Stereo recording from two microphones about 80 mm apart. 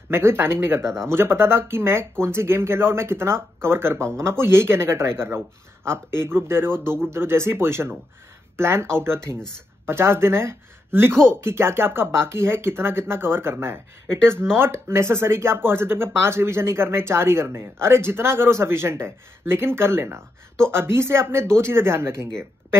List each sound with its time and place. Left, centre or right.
0.1 s speech: right